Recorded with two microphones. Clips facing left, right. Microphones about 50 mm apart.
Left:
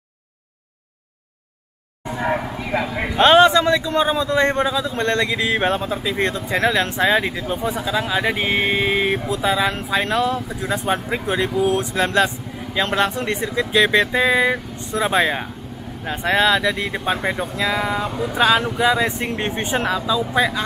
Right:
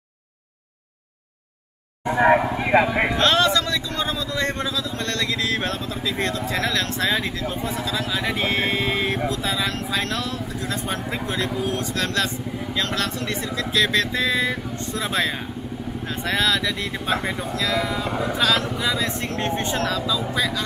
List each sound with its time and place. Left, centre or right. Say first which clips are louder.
2.0 s speech: right 6 dB; right
3.2 s speech: left 10 dB; left